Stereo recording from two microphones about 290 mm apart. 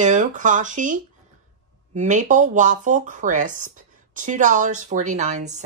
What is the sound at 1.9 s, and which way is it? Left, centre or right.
Speech, right.